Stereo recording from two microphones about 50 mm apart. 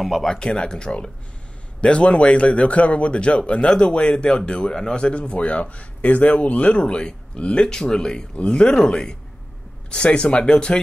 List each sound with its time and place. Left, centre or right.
0.2 s a man's voice: centre